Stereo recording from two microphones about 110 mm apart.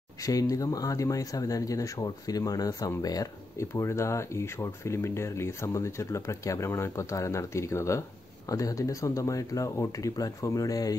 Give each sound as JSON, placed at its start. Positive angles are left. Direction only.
{"t": 0.2, "sound": "speech", "side_deg": 30}